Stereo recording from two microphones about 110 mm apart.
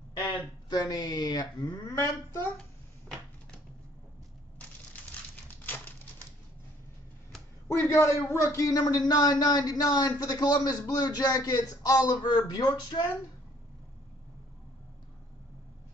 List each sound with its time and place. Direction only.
0.2 s a man's voice: 35° left (ahead or behind)
5.3 s typewriter: 15° left (ahead or behind)
7.8 s a man's voice: 25° left (ahead or behind)